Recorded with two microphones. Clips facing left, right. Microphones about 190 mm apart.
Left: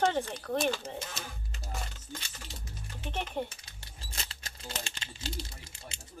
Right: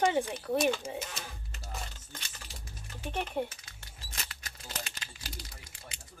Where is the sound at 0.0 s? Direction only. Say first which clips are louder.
Right 1 dB; 10° right (ahead or behind).